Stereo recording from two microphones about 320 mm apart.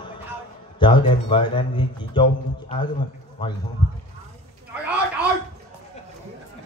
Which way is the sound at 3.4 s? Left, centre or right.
Centre.